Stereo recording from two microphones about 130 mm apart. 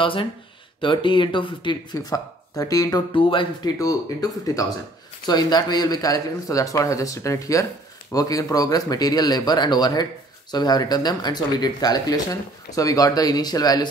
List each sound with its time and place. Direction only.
0.0 s speech: 40° left (ahead or behind)
3.1 s speech: 40° left (ahead or behind)
3.7 s speech: 25° left (ahead or behind)